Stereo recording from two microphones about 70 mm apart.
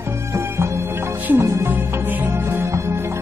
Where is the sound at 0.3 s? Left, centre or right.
Right.